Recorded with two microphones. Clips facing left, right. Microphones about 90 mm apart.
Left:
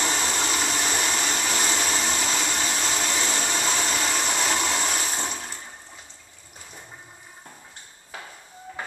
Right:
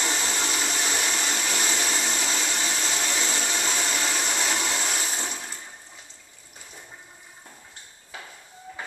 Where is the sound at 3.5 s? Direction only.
10° left (ahead or behind).